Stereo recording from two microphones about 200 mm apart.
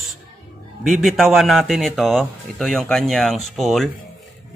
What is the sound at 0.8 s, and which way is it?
Speech, centre (ahead or behind).